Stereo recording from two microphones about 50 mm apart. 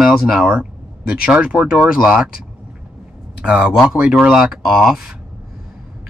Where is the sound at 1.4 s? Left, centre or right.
Right.